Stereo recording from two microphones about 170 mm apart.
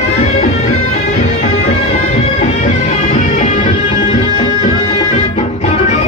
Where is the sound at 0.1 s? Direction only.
40° left (ahead or behind).